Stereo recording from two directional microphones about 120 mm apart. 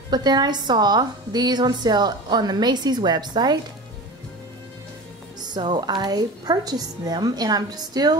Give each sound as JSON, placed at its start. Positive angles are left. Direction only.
{"t": 0.1, "sound": "a woman's voice", "side_deg": -35}
{"t": 5.4, "sound": "a woman's voice", "side_deg": -40}